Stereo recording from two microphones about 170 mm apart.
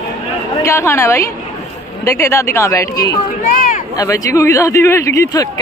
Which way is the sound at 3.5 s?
50° left (ahead or behind).